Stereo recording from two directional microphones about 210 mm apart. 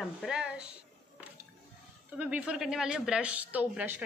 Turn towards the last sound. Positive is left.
turn(degrees=-5)  # may be behind; listen again after turning